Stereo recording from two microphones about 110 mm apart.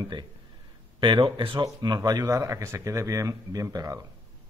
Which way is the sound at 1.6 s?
35° right (ahead or behind).